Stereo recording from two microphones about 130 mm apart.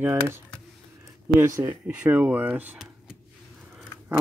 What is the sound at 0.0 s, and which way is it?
Speech, 15° right (ahead or behind).